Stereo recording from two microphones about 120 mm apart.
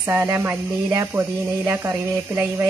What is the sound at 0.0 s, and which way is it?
Speech, 20° right (ahead or behind).